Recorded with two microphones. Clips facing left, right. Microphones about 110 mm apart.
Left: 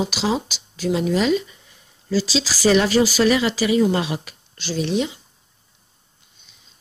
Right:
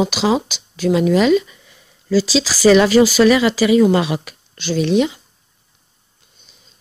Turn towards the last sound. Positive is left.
turn(degrees=-70)  # may be behind; listen again after turning